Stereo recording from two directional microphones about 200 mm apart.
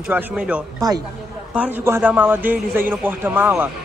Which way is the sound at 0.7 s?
20° right (ahead or behind).